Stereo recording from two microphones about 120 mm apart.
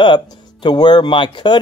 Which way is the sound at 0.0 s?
40° left (ahead or behind).